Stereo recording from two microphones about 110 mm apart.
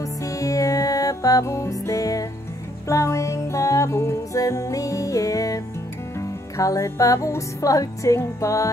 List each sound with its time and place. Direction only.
0.0 s music: 30° left (ahead or behind)